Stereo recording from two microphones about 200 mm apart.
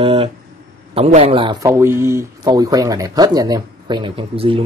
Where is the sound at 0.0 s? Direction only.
25° right (ahead or behind).